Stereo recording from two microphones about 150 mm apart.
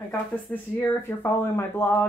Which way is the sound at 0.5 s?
15° left (ahead or behind).